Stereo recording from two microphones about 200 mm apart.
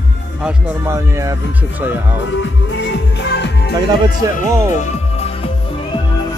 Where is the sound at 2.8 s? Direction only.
60° left (ahead or behind).